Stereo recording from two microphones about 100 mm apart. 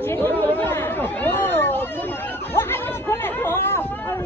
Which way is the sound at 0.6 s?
20° left (ahead or behind).